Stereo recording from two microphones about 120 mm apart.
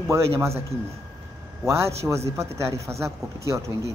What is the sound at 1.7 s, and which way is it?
Speech, 25° right (ahead or behind).